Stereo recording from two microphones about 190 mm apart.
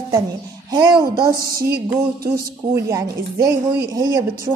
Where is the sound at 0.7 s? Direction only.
25° right (ahead or behind).